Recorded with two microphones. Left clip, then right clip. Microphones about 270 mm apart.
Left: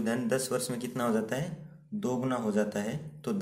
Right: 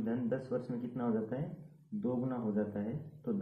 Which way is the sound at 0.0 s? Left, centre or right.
Left.